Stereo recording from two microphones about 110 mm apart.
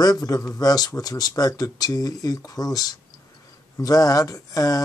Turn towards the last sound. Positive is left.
turn(degrees=35)  # may be behind; listen again after turning